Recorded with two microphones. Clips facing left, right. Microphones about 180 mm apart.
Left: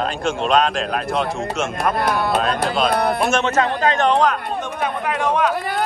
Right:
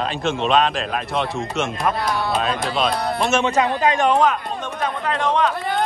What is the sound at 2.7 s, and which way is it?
Speech, centre (ahead or behind).